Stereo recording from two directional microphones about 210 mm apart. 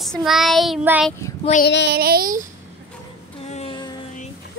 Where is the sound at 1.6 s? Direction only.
55° left (ahead or behind).